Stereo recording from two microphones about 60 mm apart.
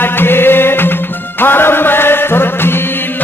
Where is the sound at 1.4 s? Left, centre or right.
Left.